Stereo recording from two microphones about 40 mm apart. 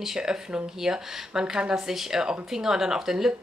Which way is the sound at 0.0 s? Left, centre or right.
Centre.